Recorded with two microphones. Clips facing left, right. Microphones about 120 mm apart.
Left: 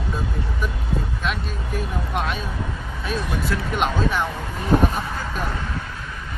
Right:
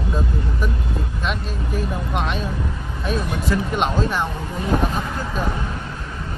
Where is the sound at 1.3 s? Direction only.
Centre (ahead or behind).